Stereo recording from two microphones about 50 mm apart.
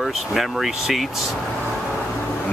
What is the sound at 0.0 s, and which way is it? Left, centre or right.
Speech, centre.